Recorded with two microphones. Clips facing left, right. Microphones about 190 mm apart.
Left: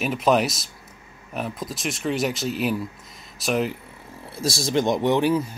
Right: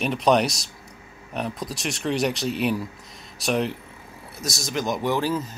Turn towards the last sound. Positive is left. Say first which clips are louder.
# left 4 dB
turn(degrees=10)  # may be behind; listen again after turning